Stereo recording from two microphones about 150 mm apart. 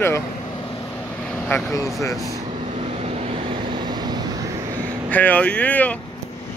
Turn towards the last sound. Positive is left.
turn(degrees=10)  # may be behind; listen again after turning